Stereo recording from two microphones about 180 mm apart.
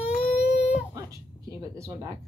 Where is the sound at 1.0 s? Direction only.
20° right (ahead or behind).